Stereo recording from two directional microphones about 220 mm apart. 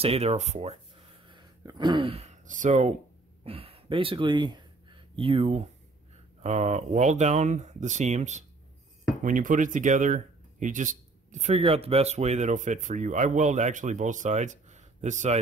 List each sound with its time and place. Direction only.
0.0 s speech: 25° right (ahead or behind)